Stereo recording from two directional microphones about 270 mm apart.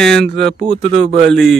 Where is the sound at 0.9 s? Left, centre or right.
Right.